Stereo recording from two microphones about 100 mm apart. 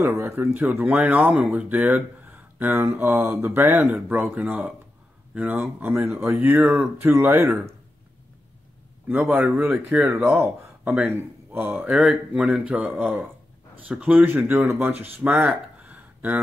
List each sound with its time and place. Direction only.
0.0 s speech: 25° right (ahead or behind)
4.1 s speech: 15° right (ahead or behind)
9.1 s speech: 15° right (ahead or behind)
15.8 s a sound: 15° right (ahead or behind)